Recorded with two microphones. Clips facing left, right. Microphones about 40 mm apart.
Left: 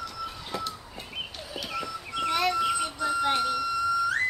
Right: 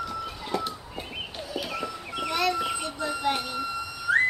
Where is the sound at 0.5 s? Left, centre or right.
Centre.